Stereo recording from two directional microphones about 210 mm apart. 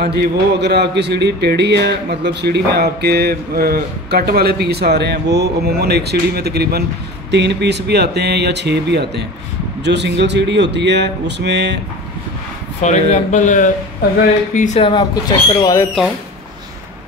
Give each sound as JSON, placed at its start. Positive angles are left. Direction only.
{"t": 0.0, "sound": "speech", "side_deg": -50}
{"t": 12.8, "sound": "speech", "side_deg": 35}
{"t": 14.8, "sound": "speech", "side_deg": 20}